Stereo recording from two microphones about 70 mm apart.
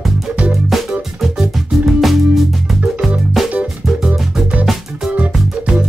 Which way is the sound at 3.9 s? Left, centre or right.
Centre.